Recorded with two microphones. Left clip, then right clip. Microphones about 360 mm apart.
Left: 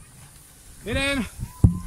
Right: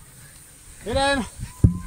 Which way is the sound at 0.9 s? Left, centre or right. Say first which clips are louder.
Right 4 dB; centre.